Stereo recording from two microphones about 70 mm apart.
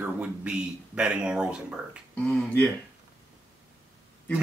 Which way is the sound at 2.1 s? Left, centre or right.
Centre.